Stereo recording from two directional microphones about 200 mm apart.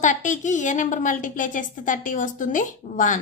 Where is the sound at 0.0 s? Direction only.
40° left (ahead or behind).